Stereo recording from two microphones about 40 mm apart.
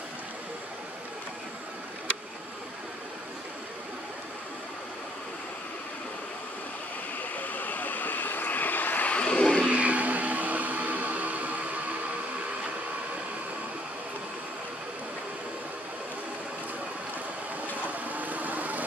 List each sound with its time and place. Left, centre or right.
7.3 s vehicle: left
9.1 s vehicle: left
9.7 s a sound: right
17.9 s vehicle: right